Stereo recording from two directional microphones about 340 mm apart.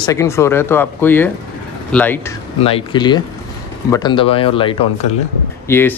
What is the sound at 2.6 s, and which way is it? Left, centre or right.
Speech, centre.